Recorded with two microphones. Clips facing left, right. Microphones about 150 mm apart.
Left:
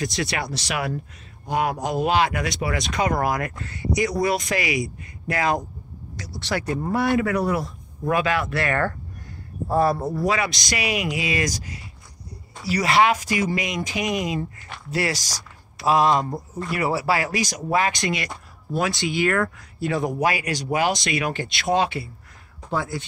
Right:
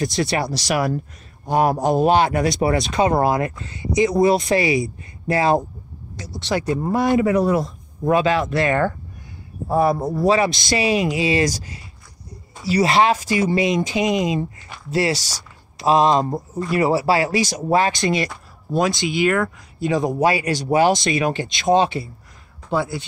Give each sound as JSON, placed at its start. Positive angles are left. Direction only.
{"t": 0.0, "sound": "speech", "side_deg": -30}
{"t": 10.2, "sound": "speech", "side_deg": -30}